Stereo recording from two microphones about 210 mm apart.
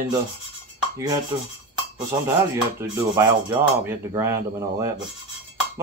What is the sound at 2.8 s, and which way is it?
Speech, 15° right (ahead or behind).